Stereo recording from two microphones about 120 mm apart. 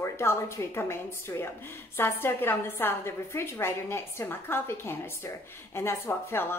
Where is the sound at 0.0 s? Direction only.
20° left (ahead or behind).